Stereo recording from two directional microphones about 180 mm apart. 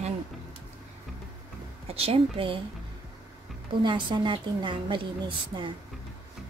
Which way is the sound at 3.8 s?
25° right (ahead or behind).